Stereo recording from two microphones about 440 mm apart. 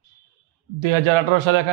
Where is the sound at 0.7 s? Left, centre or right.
Right.